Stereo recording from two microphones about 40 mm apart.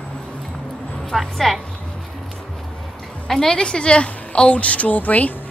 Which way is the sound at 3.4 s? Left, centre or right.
Left.